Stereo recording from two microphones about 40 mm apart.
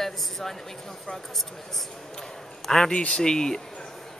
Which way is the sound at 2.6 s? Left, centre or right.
Centre.